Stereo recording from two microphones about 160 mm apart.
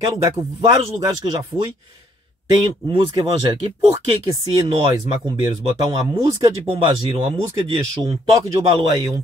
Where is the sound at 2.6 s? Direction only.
25° right (ahead or behind).